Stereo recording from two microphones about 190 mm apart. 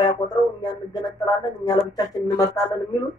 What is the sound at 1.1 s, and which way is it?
Speech, 20° left (ahead or behind).